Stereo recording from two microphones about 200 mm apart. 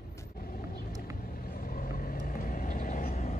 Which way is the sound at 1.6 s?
45° left (ahead or behind).